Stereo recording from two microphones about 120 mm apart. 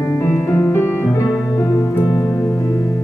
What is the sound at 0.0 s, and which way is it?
Music, 20° left (ahead or behind).